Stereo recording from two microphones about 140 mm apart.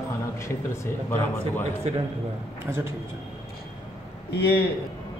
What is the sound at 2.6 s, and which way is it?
Speech, 20° right (ahead or behind).